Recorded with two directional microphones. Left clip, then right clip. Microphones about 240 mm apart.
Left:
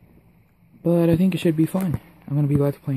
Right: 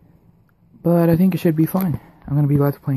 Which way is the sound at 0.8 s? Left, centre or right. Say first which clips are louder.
Right 3 dB; centre.